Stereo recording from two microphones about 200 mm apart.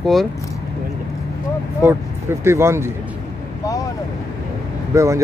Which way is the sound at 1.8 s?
10° right (ahead or behind).